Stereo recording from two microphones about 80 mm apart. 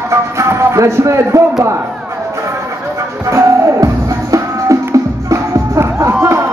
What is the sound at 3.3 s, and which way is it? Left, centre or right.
Music, right.